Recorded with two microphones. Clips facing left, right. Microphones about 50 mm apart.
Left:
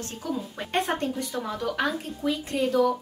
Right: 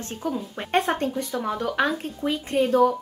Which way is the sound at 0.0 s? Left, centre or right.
Right.